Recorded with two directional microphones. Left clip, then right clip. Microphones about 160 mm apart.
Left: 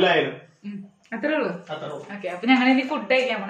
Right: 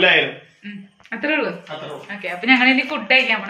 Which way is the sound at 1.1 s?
5° left (ahead or behind).